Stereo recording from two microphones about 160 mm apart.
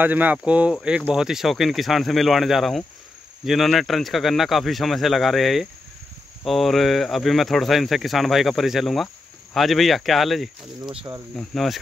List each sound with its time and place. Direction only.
0.0 s speech: 10° right (ahead or behind)